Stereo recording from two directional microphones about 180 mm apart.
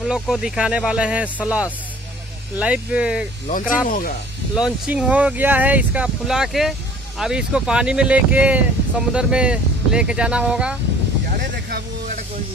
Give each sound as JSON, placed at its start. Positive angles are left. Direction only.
{"t": 0.0, "sound": "speech", "side_deg": -5}
{"t": 3.4, "sound": "speech", "side_deg": 50}
{"t": 4.6, "sound": "speech", "side_deg": -5}